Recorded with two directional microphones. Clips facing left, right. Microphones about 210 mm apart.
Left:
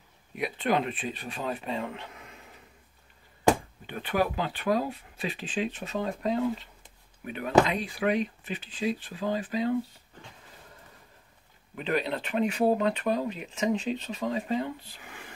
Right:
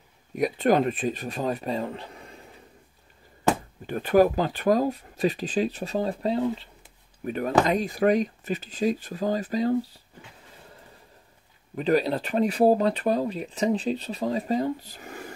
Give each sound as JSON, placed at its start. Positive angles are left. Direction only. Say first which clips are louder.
{"t": 0.4, "sound": "speech", "louder": "right 6 dB", "side_deg": -45}
{"t": 3.8, "sound": "speech", "louder": "right 10 dB", "side_deg": -40}
{"t": 7.2, "sound": "speech", "louder": "right 1 dB", "side_deg": -40}
{"t": 11.7, "sound": "speech", "louder": "right 6 dB", "side_deg": -35}